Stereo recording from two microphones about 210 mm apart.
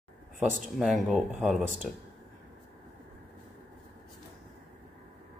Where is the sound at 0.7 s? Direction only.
Centre (ahead or behind).